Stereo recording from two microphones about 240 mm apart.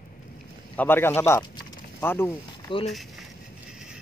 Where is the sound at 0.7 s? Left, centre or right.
Centre.